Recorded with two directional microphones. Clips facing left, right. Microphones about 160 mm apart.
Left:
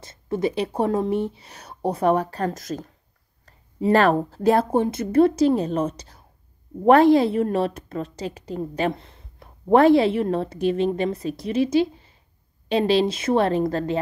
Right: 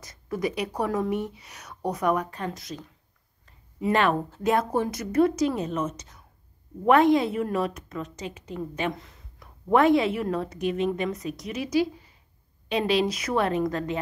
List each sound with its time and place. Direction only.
0.0 s a woman's voice: 25° left (ahead or behind)